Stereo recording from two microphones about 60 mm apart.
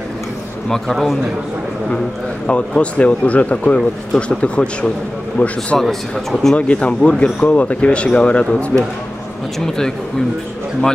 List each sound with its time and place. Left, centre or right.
0.7 s speech: centre
2.4 s speech: centre
5.4 s speech: left
5.8 s speech: centre
6.5 s speech: centre